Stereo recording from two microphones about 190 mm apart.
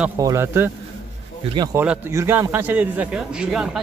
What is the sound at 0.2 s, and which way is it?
A man's voice, 15° right (ahead or behind).